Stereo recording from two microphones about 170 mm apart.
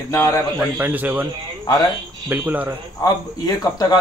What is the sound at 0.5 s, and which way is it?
Speech, 10° right (ahead or behind).